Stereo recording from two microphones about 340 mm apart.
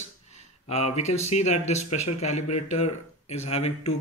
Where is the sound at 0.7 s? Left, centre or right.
Centre.